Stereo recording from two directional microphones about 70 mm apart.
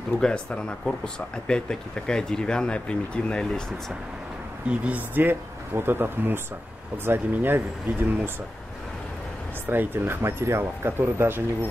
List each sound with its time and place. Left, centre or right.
0.2 s speech: centre
4.6 s speech: right
9.7 s speech: right